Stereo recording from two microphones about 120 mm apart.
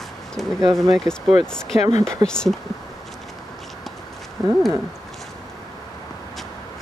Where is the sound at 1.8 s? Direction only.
70° left (ahead or behind).